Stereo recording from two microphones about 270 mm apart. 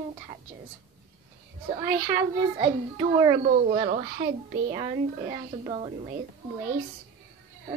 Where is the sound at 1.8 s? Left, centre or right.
Centre.